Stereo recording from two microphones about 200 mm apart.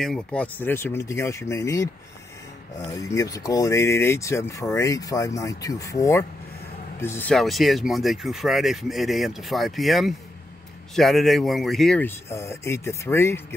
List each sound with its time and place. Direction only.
0.0 s speech: 5° left (ahead or behind)
2.9 s speech: 15° left (ahead or behind)